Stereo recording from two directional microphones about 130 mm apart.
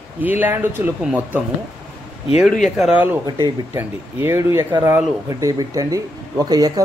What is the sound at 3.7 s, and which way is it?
Speech, 20° right (ahead or behind).